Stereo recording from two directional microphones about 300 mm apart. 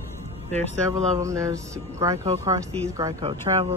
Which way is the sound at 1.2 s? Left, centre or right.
Centre.